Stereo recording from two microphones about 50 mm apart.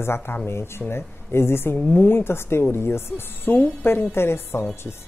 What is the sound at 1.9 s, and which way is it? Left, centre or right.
Speech, left.